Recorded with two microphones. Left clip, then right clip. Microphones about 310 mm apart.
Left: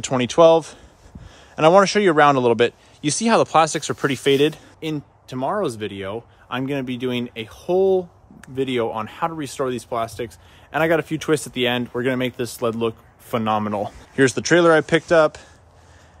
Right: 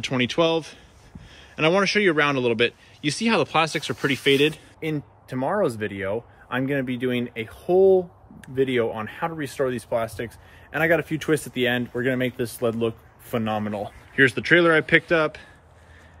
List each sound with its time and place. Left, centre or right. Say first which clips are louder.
0.0 s speech: left 8 dB; centre